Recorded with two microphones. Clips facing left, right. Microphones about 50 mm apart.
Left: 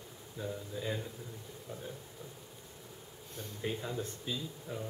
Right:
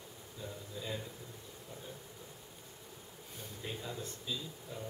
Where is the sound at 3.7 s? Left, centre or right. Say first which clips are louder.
Left 5 dB; centre.